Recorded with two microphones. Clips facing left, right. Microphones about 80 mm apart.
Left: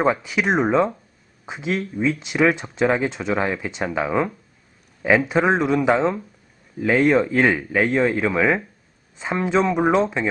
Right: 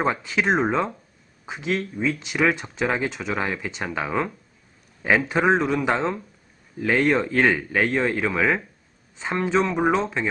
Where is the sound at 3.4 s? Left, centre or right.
Centre.